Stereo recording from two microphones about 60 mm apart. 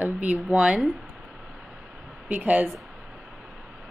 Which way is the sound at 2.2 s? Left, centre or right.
Right.